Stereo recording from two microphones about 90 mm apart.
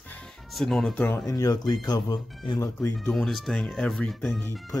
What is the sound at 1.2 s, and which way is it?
Speech, 40° left (ahead or behind).